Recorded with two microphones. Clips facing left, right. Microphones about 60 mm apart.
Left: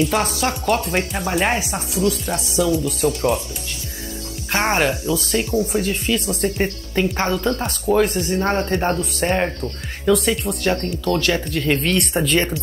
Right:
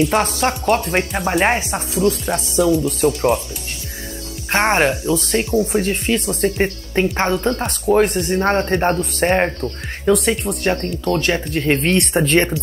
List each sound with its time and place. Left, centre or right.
0.1 s speech: right
4.5 s speech: right